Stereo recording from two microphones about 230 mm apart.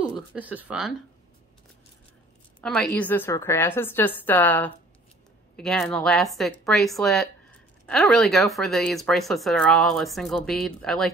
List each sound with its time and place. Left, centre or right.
0.3 s speech: centre
2.6 s a woman's voice: centre